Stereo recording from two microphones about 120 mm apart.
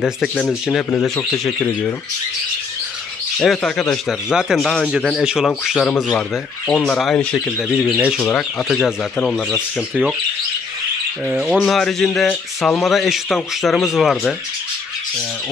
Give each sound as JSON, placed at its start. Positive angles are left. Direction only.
{"t": 3.3, "sound": "speech", "side_deg": 5}
{"t": 4.6, "sound": "speech", "side_deg": 5}
{"t": 5.2, "sound": "speech", "side_deg": -5}
{"t": 9.8, "sound": "speech", "side_deg": -5}
{"t": 11.2, "sound": "speech", "side_deg": -15}
{"t": 11.5, "sound": "speech", "side_deg": 0}